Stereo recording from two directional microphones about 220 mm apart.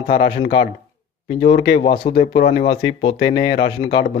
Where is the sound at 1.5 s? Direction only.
25° left (ahead or behind).